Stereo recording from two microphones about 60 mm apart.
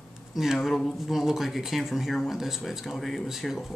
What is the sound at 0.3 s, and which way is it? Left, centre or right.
Speech, centre.